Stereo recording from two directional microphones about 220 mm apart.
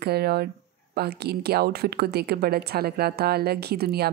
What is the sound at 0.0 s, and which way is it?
A woman's voice, 45° right (ahead or behind).